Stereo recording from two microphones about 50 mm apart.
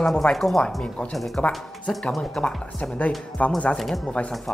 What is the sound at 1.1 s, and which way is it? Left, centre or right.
A woman's voice, centre.